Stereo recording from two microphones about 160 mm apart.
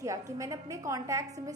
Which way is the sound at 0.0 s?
20° right (ahead or behind).